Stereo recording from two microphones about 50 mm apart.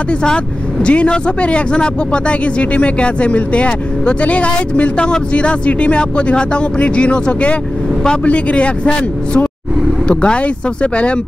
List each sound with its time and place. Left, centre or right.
0.8 s speech: left